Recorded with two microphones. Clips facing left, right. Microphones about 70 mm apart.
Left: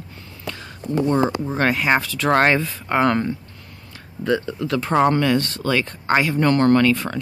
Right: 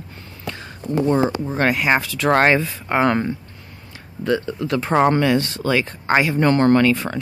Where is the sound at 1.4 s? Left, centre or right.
Centre.